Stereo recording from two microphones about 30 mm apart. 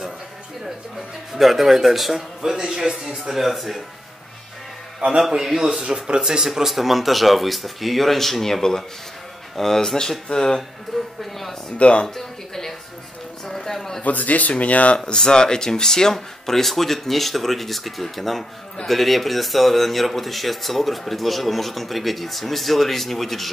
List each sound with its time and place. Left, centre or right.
1.3 s speech: centre
2.4 s speech: centre
3.3 s speech: centre
5.3 s a man's voice: centre
5.9 s speech: right
6.4 s speech: centre
9.9 s speech: left
10.9 s speech: centre
11.8 s speech: left
12.2 s speech: centre
14.0 s speech: left
15.1 s speech: left; by 23.5 s centre